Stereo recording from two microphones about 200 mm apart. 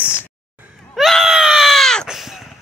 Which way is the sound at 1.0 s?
Centre (ahead or behind).